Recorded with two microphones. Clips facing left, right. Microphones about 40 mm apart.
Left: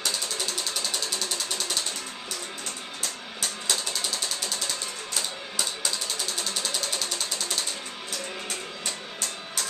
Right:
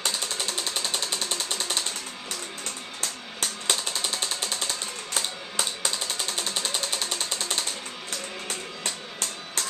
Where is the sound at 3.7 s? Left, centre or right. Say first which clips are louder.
Right 2 dB; right.